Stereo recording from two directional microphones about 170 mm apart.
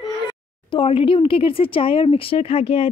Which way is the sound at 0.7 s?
30° left (ahead or behind).